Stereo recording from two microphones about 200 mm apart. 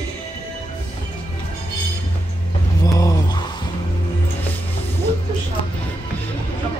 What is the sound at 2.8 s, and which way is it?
Vehicle, 20° left (ahead or behind).